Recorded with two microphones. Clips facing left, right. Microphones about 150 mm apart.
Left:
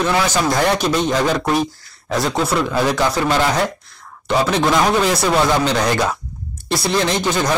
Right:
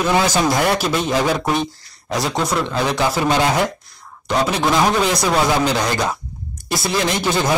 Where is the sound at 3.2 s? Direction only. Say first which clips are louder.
Right 2 dB; 15° right (ahead or behind).